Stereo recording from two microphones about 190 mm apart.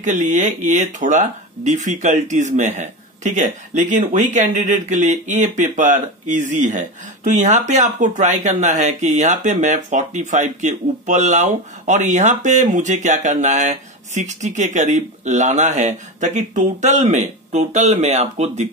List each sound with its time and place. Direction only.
0.0 s speech: 40° right (ahead or behind)